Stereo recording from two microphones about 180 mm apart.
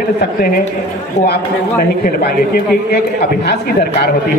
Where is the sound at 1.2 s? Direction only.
35° left (ahead or behind).